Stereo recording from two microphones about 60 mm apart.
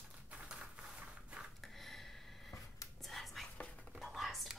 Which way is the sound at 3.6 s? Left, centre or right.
Left.